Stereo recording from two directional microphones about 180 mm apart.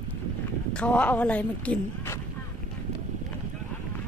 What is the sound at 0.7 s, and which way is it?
Speech, 5° left (ahead or behind).